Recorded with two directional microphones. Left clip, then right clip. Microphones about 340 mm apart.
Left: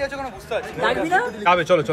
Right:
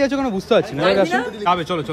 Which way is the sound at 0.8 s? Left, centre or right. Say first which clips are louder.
Right 3 dB; centre.